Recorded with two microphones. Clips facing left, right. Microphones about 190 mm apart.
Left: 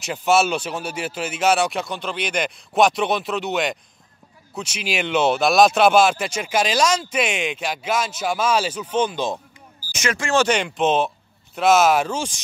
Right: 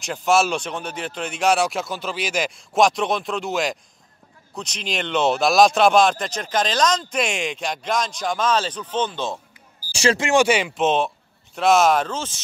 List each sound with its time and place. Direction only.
0.0 s speech: centre (ahead or behind)
9.9 s speech: 25° right (ahead or behind)
10.3 s speech: 10° right (ahead or behind); by 12.4 s 10° left (ahead or behind)